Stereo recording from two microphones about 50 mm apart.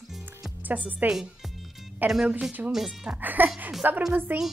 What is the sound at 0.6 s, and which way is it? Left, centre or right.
Speech, right.